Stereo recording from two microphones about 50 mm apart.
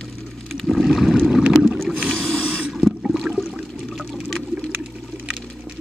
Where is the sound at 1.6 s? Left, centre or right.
Centre.